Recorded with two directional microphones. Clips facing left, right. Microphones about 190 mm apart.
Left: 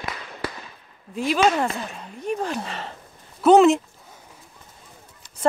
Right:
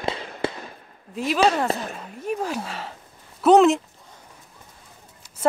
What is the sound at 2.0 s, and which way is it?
Speech, 5° right (ahead or behind).